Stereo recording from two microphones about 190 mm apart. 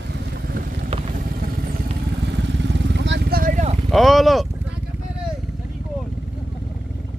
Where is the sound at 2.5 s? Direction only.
70° right (ahead or behind); by 3.7 s 45° right (ahead or behind).